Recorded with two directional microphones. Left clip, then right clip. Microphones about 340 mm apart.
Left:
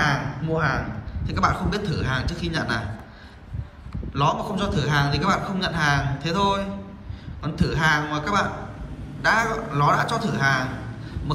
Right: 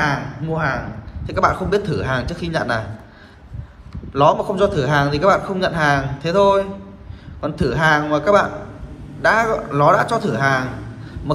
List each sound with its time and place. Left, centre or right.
0.0 s a man's voice: centre
4.1 s a man's voice: centre